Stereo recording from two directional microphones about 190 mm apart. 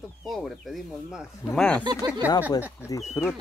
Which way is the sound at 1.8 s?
20° right (ahead or behind).